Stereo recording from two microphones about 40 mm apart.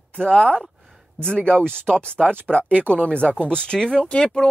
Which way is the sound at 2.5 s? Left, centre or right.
Centre.